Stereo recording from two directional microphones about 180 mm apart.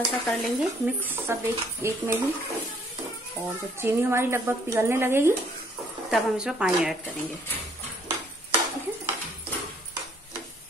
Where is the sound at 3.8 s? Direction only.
15° right (ahead or behind).